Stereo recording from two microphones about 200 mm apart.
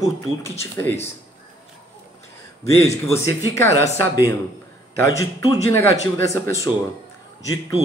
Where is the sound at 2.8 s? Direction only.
15° left (ahead or behind).